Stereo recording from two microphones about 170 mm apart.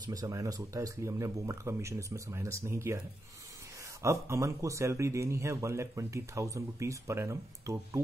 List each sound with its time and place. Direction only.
0.0 s speech: 20° right (ahead or behind)
4.0 s speech: 15° right (ahead or behind)